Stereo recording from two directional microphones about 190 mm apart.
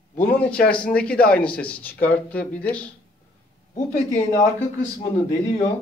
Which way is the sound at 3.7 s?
40° left (ahead or behind).